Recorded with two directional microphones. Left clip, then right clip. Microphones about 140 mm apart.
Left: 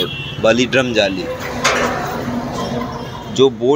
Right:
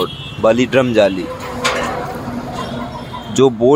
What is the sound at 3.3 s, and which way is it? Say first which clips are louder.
Speech: right 1 dB; 55° right (ahead or behind).